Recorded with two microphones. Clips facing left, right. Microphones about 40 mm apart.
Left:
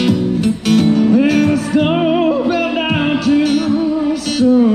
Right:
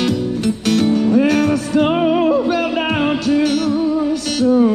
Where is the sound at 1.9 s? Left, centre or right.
Centre.